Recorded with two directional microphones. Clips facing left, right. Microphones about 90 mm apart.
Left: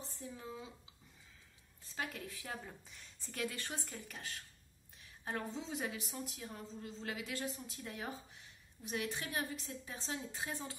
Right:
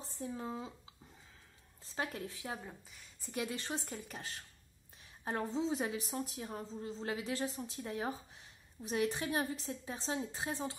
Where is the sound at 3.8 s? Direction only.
30° right (ahead or behind).